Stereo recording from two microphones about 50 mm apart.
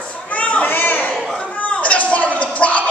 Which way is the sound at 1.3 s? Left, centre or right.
Left.